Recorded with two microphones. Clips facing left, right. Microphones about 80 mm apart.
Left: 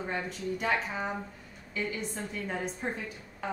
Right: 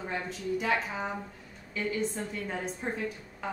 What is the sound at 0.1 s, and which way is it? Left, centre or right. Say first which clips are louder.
A woman's voice: right 3 dB; centre.